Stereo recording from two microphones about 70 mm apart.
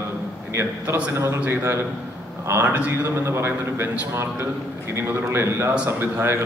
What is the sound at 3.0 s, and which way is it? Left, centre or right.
A man's voice, right.